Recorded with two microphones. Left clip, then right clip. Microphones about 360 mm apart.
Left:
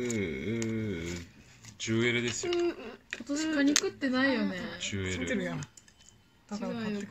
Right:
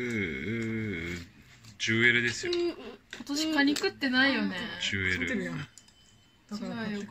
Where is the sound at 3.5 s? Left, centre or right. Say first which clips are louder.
Right 1 dB; right.